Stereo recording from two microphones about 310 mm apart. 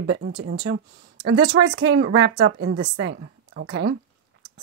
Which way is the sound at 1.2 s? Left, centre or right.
Right.